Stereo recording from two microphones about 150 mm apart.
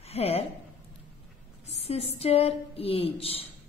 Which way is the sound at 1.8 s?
45° left (ahead or behind).